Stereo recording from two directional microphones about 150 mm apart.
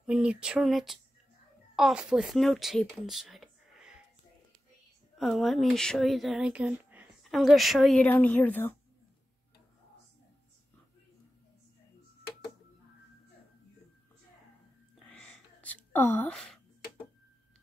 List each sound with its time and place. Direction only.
0.0 s speech: 5° right (ahead or behind)
2.8 s a sound: centre (ahead or behind)
5.1 s speech: centre (ahead or behind)
7.2 s speech: centre (ahead or behind)
15.0 s whispering: 5° left (ahead or behind)